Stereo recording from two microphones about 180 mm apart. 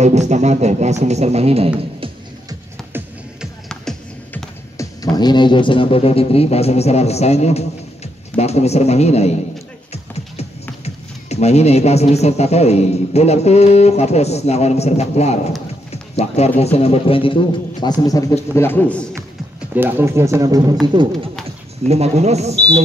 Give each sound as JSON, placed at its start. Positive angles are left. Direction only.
{"t": 0.0, "sound": "speech", "side_deg": -40}
{"t": 3.6, "sound": "music", "side_deg": 5}
{"t": 4.7, "sound": "speech", "side_deg": 20}
{"t": 11.2, "sound": "a man's voice", "side_deg": 35}
{"t": 19.7, "sound": "speech", "side_deg": -10}